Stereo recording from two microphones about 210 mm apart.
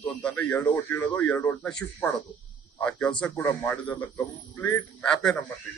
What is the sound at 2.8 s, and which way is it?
A man's voice, 5° left (ahead or behind).